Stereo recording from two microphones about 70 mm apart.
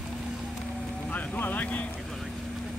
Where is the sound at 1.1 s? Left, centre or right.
Left.